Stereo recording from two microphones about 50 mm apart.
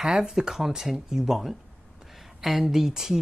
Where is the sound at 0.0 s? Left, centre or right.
Centre.